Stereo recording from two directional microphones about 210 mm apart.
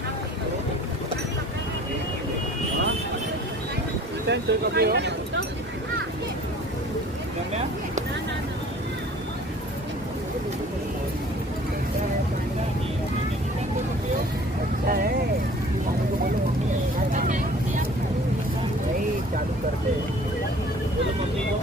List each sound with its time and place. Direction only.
4.3 s speech: 50° right (ahead or behind)
14.9 s vehicle: 45° right (ahead or behind)
17.1 s vehicle: 35° right (ahead or behind)